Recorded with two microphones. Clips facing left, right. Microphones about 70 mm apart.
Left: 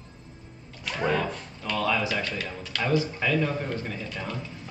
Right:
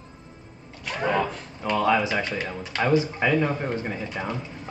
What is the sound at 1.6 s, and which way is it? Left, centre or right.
Speech, right.